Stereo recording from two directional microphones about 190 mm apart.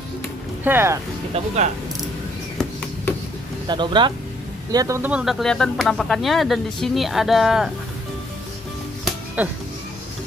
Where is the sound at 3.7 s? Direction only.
25° right (ahead or behind); by 7.7 s centre (ahead or behind).